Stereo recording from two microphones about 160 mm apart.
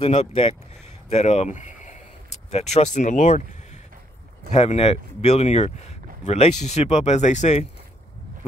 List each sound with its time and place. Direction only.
0.0 s speech: 40° left (ahead or behind)
4.5 s speech: 40° left (ahead or behind)